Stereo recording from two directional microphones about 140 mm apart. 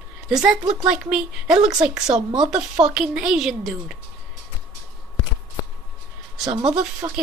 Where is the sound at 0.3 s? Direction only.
5° right (ahead or behind).